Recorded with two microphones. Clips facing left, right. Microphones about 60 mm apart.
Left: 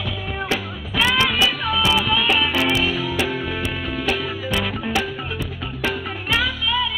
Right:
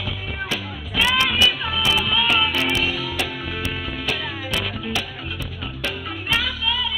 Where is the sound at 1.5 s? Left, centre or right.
Left.